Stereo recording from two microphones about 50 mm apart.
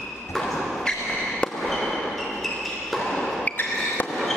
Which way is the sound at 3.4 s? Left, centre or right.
Left.